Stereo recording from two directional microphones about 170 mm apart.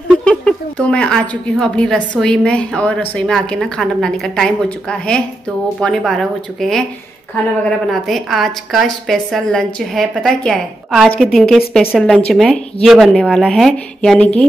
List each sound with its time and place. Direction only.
0.1 s speech: 5° left (ahead or behind)
7.9 s speech: centre (ahead or behind)